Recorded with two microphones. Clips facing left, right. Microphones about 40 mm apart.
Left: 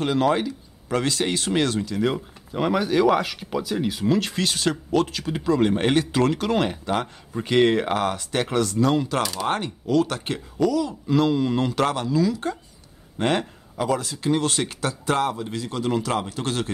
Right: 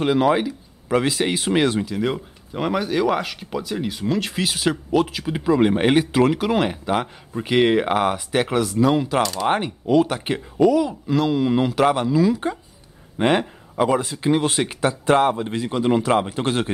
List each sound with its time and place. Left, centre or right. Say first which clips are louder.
0.0 s speech: right 3 dB; centre
2.0 s speech: even; centre
9.2 s speech: right 4 dB; centre
9.5 s speech: right 4 dB; centre
11.1 s speech: left 2 dB; centre
12.0 s speech: right 4 dB; right